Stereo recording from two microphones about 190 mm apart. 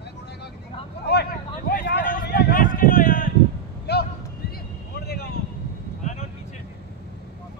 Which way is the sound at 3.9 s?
60° left (ahead or behind).